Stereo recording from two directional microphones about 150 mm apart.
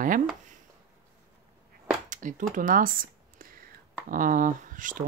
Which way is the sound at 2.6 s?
65° right (ahead or behind).